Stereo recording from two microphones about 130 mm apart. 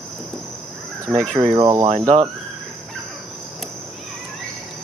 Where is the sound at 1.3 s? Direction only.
35° right (ahead or behind).